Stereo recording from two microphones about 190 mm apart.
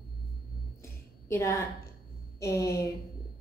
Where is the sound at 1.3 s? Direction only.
15° left (ahead or behind).